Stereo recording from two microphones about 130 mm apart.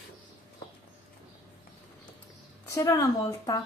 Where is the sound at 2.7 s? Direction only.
25° left (ahead or behind).